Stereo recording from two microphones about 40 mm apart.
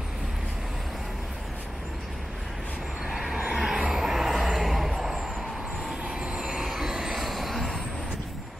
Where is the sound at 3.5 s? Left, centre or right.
Centre.